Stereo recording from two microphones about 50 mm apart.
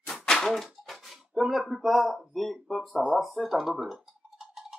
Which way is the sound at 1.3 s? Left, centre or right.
Centre.